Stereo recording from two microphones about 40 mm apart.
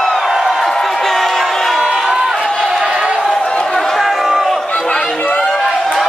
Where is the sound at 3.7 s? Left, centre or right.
Centre.